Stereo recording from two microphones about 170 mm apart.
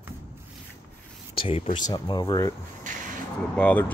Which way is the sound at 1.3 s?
35° left (ahead or behind).